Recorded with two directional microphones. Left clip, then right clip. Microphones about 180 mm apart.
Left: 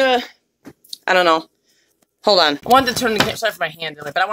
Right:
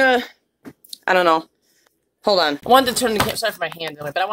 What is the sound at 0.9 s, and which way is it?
Speech, centre (ahead or behind).